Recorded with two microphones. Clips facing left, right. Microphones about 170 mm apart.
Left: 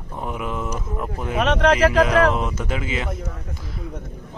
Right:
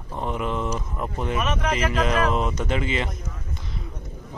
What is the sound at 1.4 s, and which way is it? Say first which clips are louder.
Speech: left 10 dB; 70° left (ahead or behind).